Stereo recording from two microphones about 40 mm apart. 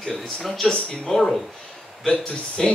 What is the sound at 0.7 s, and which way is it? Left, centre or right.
Speech, left.